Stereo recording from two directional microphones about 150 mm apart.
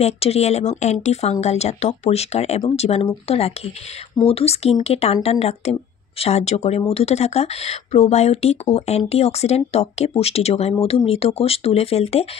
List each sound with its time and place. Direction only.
0.0 s speech: 45° left (ahead or behind)